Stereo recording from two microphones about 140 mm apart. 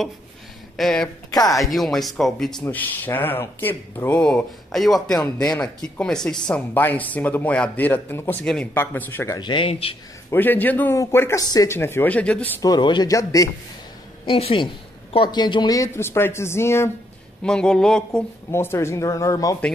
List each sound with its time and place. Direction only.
0.7 s speech: 5° left (ahead or behind)
1.3 s speech: 25° left (ahead or behind)
1.6 s speech: centre (ahead or behind)
2.6 s speech: 15° left (ahead or behind)
9.4 s speech: 35° left (ahead or behind)
10.3 s speech: 15° left (ahead or behind)
12.6 s speech: 30° left (ahead or behind)
14.2 s speech: 40° left (ahead or behind); by 16.9 s 20° left (ahead or behind)
17.4 s speech: 5° left (ahead or behind)
18.5 s speech: 20° left (ahead or behind)